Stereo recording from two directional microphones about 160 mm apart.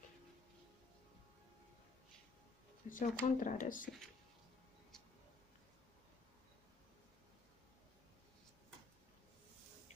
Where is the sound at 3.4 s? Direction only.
55° left (ahead or behind).